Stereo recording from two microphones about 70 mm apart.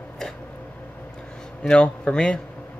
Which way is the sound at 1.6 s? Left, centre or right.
Centre.